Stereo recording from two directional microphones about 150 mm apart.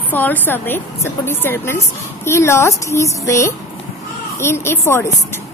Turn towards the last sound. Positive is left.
turn(degrees=15)  # may be behind; listen again after turning